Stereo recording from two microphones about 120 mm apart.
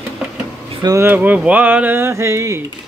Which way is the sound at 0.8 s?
25° right (ahead or behind).